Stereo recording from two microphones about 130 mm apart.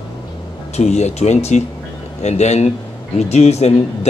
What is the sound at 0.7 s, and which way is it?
Speech, 60° left (ahead or behind).